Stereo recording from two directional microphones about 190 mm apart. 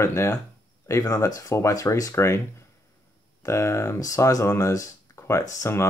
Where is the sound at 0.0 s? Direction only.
15° left (ahead or behind).